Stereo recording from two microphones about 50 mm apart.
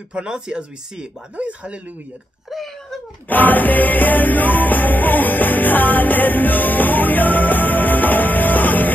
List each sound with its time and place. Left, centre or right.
0.1 s speech: centre
1.3 s speech: right
2.5 s a sound: centre
3.3 s music: left